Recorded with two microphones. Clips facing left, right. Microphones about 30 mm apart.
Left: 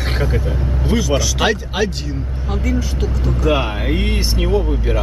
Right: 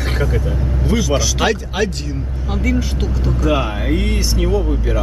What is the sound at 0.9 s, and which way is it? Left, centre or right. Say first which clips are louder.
Speech: even; centre.